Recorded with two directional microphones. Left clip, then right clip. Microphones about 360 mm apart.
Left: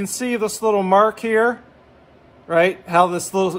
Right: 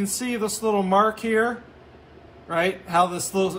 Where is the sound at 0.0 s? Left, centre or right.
Centre.